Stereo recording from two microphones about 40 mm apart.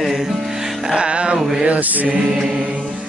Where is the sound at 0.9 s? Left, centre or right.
Right.